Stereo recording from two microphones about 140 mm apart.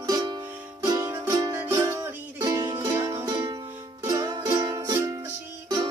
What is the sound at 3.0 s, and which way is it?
Music, 20° right (ahead or behind).